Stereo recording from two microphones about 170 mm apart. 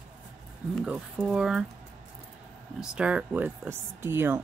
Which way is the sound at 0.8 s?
5° right (ahead or behind).